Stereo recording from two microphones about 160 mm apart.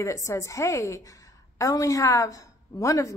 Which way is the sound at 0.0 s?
20° left (ahead or behind).